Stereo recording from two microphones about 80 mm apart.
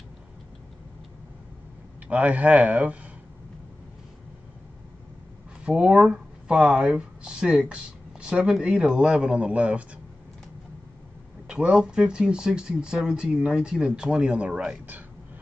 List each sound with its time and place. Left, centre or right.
2.0 s speech: centre
5.7 s speech: centre
11.4 s speech: centre